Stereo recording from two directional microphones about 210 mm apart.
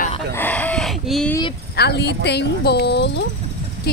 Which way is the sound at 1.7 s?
50° left (ahead or behind).